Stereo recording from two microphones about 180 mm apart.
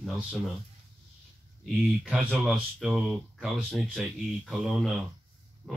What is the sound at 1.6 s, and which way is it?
Speech, centre (ahead or behind).